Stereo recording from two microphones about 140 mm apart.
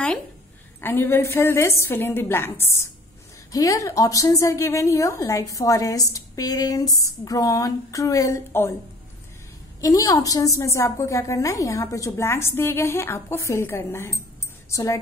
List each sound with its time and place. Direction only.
0.7 s a woman's voice: 15° left (ahead or behind)
9.8 s a woman's voice: 25° left (ahead or behind)